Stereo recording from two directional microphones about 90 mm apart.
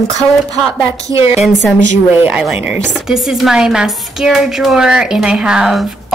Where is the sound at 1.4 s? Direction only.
Centre (ahead or behind).